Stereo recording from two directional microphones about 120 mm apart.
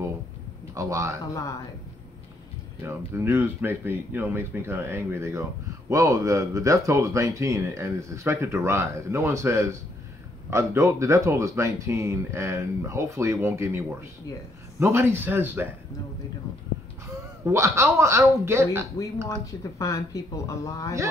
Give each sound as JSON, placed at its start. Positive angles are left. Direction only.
{"t": 0.7, "sound": "speech", "side_deg": -25}
{"t": 2.8, "sound": "speech", "side_deg": -20}
{"t": 17.5, "sound": "speech", "side_deg": -20}
{"t": 19.4, "sound": "speech", "side_deg": 25}